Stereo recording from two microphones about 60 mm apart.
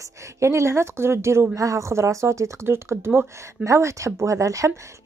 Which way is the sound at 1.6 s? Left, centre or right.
Right.